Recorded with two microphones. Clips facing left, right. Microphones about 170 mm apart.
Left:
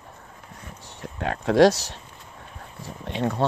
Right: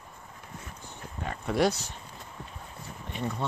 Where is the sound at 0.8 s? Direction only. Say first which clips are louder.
Left 9 dB; 85° left.